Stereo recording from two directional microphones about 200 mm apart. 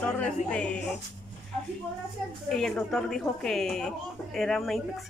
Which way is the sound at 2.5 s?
Centre (ahead or behind).